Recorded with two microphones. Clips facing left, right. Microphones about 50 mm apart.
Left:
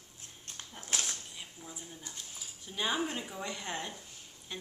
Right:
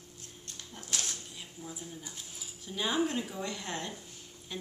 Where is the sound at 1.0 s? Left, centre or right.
Centre.